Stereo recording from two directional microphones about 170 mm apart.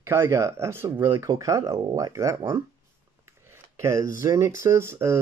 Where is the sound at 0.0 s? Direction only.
15° right (ahead or behind).